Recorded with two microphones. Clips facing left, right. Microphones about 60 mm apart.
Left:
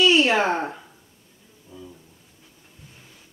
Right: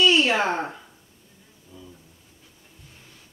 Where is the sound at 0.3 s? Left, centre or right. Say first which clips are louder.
Left 2 dB; left.